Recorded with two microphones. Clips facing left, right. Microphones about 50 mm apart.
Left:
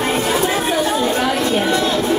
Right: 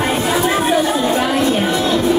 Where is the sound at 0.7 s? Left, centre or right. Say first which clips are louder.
Right 2 dB; centre.